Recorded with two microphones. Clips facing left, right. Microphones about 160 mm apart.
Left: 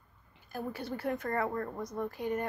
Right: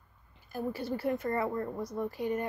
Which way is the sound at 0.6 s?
Centre (ahead or behind).